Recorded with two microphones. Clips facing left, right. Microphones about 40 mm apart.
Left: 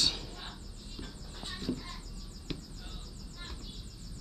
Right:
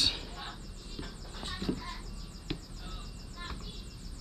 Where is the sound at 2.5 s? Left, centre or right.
Centre.